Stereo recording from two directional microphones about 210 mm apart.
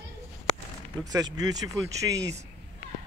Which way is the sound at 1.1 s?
20° right (ahead or behind).